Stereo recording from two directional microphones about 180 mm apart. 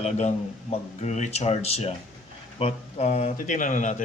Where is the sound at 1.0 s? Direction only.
40° left (ahead or behind).